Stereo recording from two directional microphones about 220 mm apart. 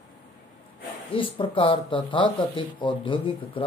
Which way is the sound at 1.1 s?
25° left (ahead or behind).